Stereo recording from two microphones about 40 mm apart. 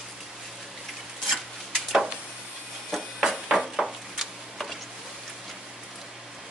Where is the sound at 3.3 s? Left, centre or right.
Centre.